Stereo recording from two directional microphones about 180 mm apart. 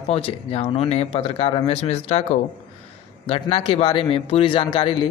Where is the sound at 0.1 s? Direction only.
35° left (ahead or behind).